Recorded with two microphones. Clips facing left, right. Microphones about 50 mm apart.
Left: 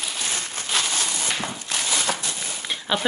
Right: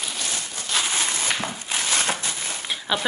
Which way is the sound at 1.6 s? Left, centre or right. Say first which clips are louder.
Right 1 dB; centre.